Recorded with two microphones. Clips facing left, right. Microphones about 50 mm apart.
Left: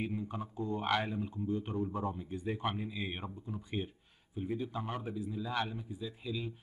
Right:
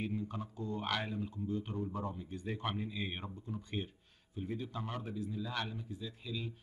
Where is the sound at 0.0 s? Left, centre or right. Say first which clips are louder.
Left 1 dB; centre.